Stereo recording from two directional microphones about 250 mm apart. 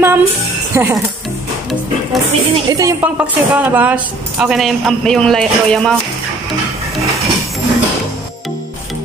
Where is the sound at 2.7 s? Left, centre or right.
Centre.